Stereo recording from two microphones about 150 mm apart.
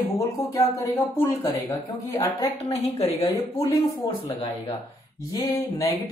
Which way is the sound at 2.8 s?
45° left (ahead or behind).